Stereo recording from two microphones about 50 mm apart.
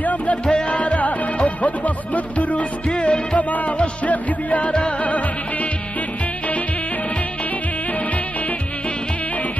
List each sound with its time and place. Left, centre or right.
0.0 s music: left